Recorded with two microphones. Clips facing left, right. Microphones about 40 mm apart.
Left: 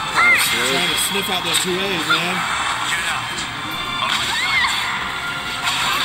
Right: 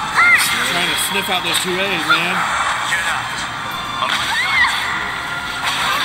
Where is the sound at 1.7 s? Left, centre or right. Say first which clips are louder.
Right 4 dB; centre.